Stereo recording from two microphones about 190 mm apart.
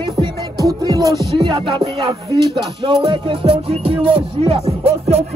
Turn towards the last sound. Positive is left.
turn(degrees=-30)  # may be behind; listen again after turning